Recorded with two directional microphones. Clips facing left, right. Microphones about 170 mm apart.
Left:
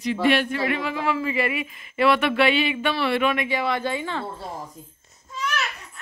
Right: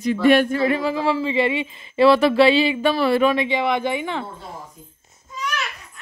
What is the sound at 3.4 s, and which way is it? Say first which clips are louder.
Speech: right 4 dB; 20° right (ahead or behind).